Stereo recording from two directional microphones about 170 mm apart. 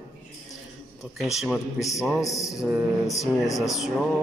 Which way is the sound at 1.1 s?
Centre (ahead or behind).